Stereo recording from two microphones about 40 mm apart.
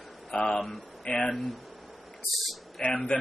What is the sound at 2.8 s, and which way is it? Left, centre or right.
Speech, left.